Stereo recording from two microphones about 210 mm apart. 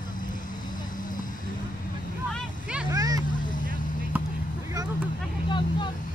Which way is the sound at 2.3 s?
5° right (ahead or behind).